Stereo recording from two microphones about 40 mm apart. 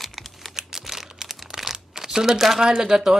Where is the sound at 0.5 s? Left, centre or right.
Centre.